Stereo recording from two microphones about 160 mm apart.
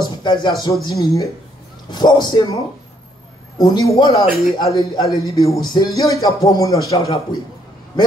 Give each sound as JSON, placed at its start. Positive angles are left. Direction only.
{"t": 0.2, "sound": "speech", "side_deg": 30}